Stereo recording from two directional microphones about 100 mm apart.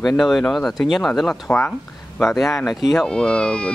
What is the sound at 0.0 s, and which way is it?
Speech, 5° left (ahead or behind).